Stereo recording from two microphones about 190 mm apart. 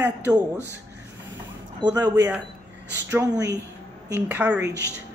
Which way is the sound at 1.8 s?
25° right (ahead or behind).